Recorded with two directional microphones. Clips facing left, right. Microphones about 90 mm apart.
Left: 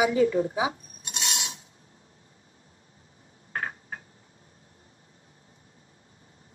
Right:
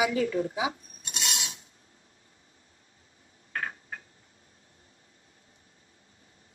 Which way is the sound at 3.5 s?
30° left (ahead or behind).